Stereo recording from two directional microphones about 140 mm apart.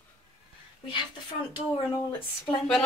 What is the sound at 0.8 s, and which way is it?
Speech, 35° left (ahead or behind).